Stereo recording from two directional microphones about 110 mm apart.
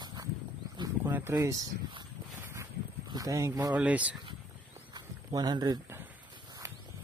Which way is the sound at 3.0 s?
35° right (ahead or behind).